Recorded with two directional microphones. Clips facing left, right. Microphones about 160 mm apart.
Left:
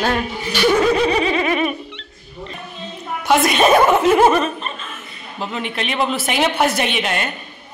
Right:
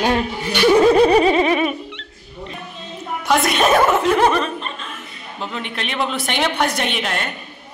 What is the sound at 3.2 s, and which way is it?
A woman's voice, centre (ahead or behind).